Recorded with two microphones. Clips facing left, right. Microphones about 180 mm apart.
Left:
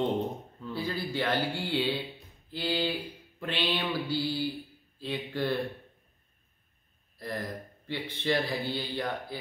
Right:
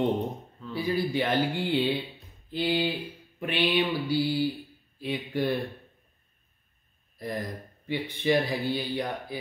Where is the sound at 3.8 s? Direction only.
15° right (ahead or behind).